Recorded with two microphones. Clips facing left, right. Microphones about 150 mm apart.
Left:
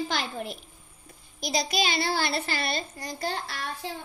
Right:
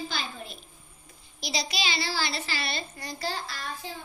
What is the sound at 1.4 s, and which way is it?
A woman's voice, 50° left (ahead or behind).